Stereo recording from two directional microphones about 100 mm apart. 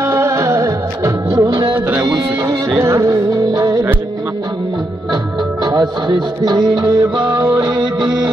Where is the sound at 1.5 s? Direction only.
50° right (ahead or behind).